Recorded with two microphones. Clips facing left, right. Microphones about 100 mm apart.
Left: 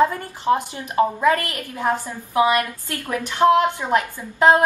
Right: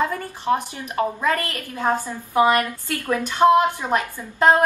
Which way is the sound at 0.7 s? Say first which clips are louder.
Left 4 dB; 15° left (ahead or behind).